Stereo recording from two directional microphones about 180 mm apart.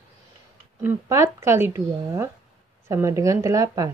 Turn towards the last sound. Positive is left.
turn(degrees=-15)  # may be behind; listen again after turning